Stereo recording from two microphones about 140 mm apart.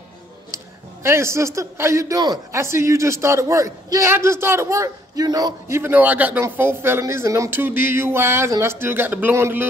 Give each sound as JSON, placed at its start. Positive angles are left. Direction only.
{"t": 1.0, "sound": "a man's voice", "side_deg": -20}